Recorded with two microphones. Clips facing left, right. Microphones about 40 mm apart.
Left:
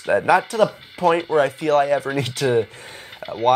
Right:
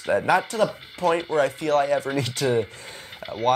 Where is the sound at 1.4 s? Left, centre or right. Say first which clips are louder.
Left 3 dB; left.